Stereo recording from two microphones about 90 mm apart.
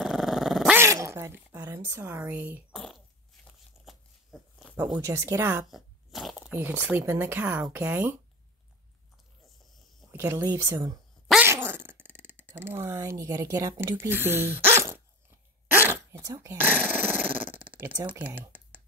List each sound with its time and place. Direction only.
0.0 s dog: 5° right (ahead or behind)
0.7 s a sound: 35° right (ahead or behind)
2.7 s fart: centre (ahead or behind)
3.8 s a sound: centre (ahead or behind)
5.0 s speech: 35° right (ahead or behind)
5.7 s a sound: centre (ahead or behind)
6.4 s speech: 20° right (ahead or behind)
10.1 s speech: 30° right (ahead or behind)
11.4 s a sound: 25° right (ahead or behind)
13.9 s speech: 25° right (ahead or behind)
15.7 s sneeze: 25° right (ahead or behind)
16.3 s speech: 40° right (ahead or behind)
16.5 s dog: 20° right (ahead or behind)